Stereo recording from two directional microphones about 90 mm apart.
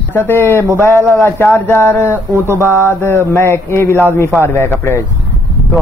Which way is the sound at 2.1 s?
25° right (ahead or behind).